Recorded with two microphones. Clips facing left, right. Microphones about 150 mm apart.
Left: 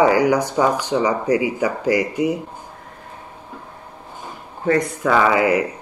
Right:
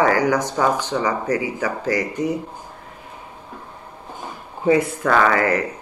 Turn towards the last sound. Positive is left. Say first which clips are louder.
# left 2 dB
turn(degrees=10)  # may be behind; listen again after turning